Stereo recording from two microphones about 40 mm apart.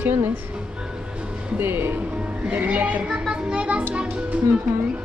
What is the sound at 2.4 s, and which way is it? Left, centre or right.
Speech, right.